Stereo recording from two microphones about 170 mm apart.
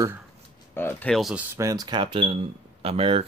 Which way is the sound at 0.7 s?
10° left (ahead or behind).